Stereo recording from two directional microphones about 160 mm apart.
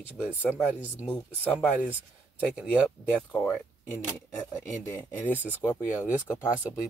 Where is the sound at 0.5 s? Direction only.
10° left (ahead or behind).